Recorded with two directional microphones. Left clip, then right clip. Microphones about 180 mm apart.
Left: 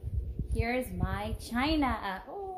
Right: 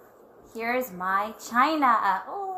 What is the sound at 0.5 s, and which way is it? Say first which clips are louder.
A woman's voice: right 5 dB; 20° left (ahead or behind).